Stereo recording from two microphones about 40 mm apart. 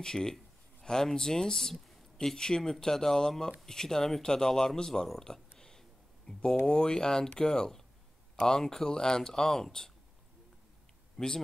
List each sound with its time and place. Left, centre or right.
0.0 s speech: centre
5.6 s a sound: centre
6.6 s speech: left
11.1 s speech: centre